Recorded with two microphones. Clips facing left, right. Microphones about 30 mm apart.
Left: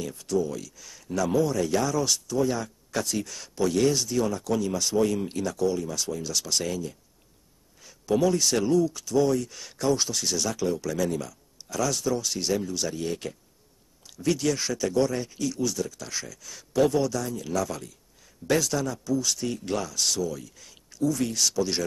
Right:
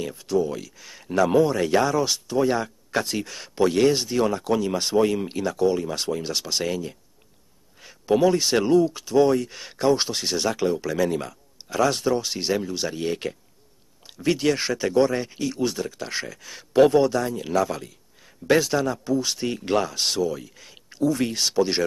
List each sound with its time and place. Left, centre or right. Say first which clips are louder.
0.0 s speech: right 3 dB; right
2.3 s speech: right 6 dB; right
6.4 s speech: right 3 dB; right